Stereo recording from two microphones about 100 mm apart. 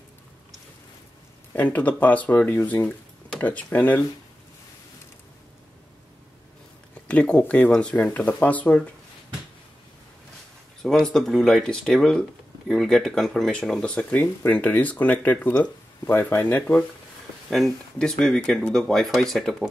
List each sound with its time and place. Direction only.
1.5 s speech: 15° left (ahead or behind)
7.1 s speech: 10° left (ahead or behind)
10.8 s speech: 5° left (ahead or behind)
17.5 s speech: 5° left (ahead or behind)